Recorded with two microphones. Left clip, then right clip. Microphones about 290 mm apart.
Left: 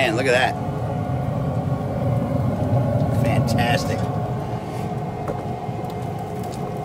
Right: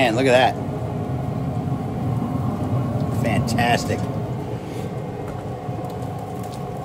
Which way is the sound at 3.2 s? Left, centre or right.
Right.